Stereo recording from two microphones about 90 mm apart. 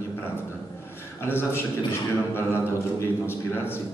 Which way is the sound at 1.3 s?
25° left (ahead or behind).